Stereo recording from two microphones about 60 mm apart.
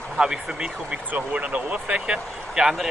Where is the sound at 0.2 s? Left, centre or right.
Centre.